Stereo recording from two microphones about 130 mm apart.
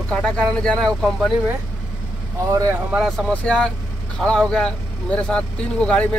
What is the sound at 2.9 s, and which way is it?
Speech, centre (ahead or behind).